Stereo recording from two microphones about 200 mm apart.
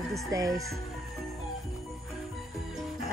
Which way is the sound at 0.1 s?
15° right (ahead or behind).